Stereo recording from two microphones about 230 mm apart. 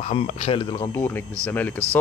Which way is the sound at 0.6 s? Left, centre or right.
Centre.